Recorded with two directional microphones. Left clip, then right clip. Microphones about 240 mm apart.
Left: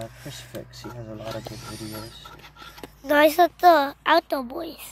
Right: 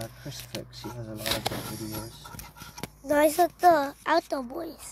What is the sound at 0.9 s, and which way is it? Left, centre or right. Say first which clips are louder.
Speech: left 2 dB; centre.